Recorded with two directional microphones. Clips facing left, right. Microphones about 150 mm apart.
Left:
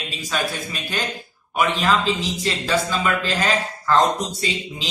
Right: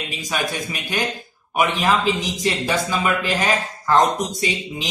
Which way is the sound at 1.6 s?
15° right (ahead or behind).